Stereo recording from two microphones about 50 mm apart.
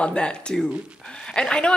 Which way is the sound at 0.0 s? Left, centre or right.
Centre.